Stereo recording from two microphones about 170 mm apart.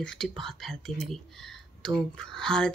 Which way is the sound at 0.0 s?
5° left (ahead or behind).